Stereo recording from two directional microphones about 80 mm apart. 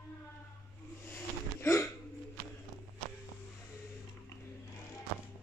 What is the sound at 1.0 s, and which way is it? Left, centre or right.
Wheeze, left.